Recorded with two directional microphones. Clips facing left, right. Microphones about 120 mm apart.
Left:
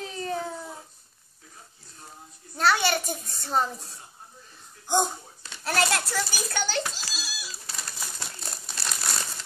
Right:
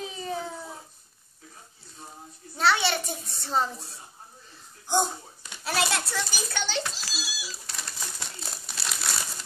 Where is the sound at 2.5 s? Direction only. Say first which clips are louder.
Left 1 dB; centre (ahead or behind).